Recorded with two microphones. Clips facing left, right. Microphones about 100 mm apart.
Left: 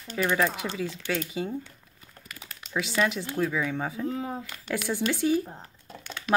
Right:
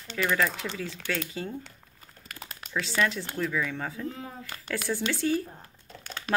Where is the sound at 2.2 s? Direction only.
50° right (ahead or behind).